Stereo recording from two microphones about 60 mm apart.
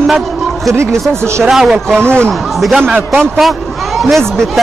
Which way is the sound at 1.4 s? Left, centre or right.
Centre.